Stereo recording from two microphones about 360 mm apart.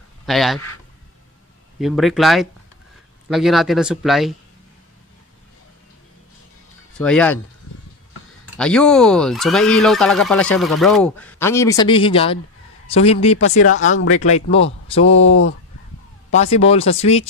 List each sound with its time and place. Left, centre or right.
0.3 s speech: centre
1.8 s speech: centre
7.0 s speech: centre
8.5 s speech: centre
13.8 s speech: left
14.2 s a man's voice: centre
15.0 s speech: left
16.3 s speech: centre